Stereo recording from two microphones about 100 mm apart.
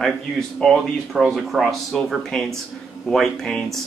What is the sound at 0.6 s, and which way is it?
Speech, 5° left (ahead or behind).